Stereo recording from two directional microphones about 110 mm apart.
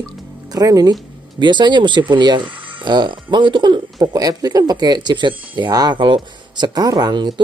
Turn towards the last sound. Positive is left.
turn(degrees=-40)  # may be behind; listen again after turning